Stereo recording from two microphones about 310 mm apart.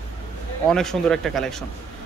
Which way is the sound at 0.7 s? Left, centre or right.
Centre.